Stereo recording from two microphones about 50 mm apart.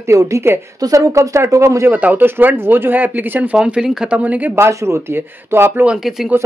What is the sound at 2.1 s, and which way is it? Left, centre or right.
Speech, right.